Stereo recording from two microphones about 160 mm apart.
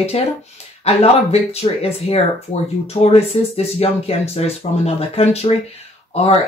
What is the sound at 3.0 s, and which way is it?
Speech, 40° left (ahead or behind).